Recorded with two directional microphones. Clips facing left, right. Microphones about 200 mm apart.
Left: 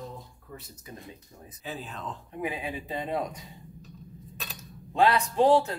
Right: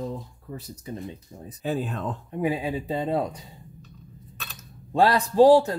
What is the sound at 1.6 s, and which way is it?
Speech, 50° right (ahead or behind).